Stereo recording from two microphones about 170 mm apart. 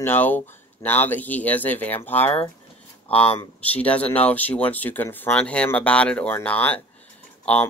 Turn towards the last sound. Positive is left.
turn(degrees=10)  # may be behind; listen again after turning